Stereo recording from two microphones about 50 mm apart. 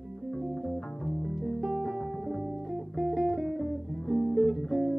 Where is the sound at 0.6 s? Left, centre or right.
Centre.